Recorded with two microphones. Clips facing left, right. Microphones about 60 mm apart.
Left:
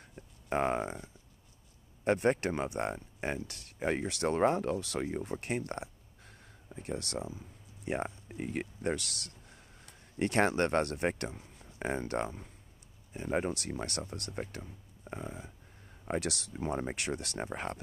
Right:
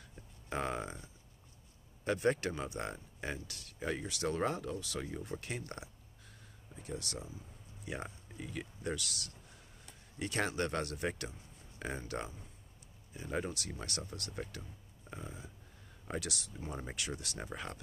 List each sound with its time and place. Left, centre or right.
0.5 s speech: left
4.6 s speech: left
13.1 s speech: left
16.1 s speech: left
16.8 s speech: left